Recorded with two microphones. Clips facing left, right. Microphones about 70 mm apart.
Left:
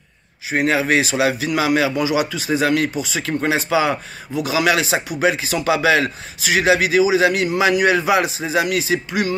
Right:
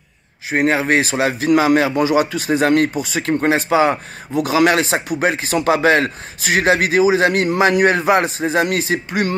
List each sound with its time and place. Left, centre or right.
0.5 s a man's voice: right